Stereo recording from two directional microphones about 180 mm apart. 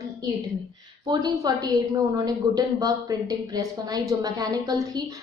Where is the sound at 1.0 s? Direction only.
20° right (ahead or behind).